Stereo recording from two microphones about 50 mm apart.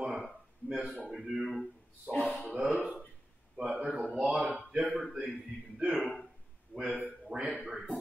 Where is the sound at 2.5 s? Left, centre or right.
Right.